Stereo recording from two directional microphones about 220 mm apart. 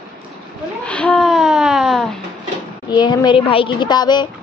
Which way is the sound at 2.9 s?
20° left (ahead or behind).